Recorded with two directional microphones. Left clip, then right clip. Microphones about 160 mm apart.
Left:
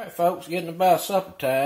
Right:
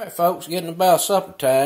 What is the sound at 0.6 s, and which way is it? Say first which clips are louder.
Speech: right 4 dB; 30° right (ahead or behind).